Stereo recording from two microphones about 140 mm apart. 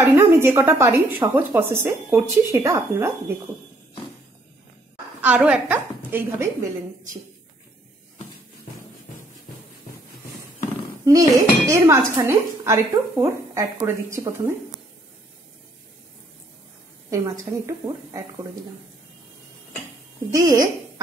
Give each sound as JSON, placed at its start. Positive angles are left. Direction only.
{"t": 0.0, "sound": "speech", "side_deg": -15}
{"t": 5.2, "sound": "speech", "side_deg": -10}
{"t": 11.1, "sound": "a woman's voice", "side_deg": -25}
{"t": 17.1, "sound": "a woman's voice", "side_deg": -25}
{"t": 20.3, "sound": "a woman's voice", "side_deg": -25}